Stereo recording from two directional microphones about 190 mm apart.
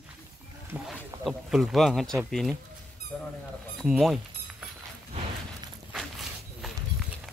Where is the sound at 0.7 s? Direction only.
Centre (ahead or behind).